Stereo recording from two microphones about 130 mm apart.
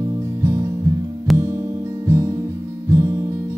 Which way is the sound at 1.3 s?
Centre (ahead or behind).